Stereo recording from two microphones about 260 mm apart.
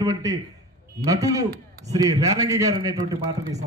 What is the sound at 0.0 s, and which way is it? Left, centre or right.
A man's voice, centre.